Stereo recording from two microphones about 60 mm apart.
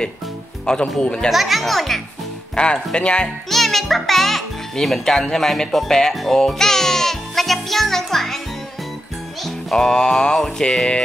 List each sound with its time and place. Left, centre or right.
0.7 s speech: centre
1.3 s speech: centre
2.5 s speech: centre
3.4 s music: centre
9.4 s music: centre